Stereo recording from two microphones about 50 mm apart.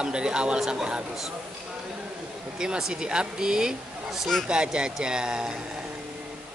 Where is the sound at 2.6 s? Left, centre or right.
Centre.